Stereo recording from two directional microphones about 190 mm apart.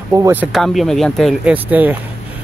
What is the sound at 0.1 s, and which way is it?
Speech, 10° right (ahead or behind).